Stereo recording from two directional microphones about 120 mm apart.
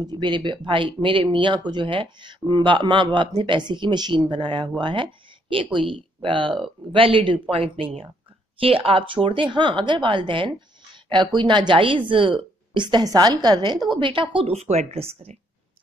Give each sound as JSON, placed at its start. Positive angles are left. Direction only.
{"t": 0.0, "sound": "a woman's voice", "side_deg": -35}